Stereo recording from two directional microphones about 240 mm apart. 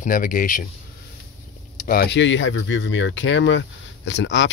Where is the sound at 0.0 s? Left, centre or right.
Left.